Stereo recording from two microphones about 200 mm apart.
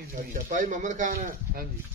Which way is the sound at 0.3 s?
40° right (ahead or behind).